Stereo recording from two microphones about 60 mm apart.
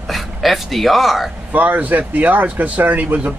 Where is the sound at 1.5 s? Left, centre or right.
Right.